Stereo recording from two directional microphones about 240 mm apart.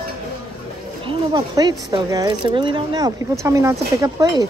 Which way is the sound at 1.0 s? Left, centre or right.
Centre.